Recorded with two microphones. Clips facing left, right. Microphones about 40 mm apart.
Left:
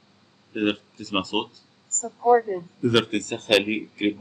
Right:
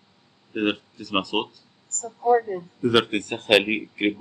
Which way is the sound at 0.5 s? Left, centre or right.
Centre.